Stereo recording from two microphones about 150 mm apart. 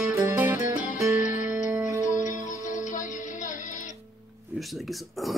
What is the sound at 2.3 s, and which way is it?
Music, 60° left (ahead or behind).